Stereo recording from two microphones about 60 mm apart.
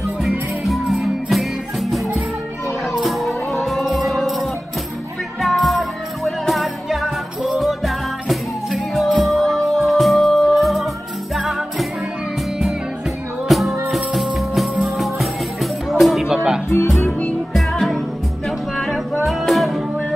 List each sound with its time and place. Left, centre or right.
0.2 s music: centre
3.0 s music: centre
13.5 s music: centre
16.6 s music: left
17.2 s music: centre
17.6 s music: centre
19.2 s music: centre